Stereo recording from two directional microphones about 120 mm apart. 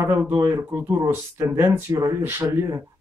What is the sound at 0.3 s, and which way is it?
Speech, 25° right (ahead or behind).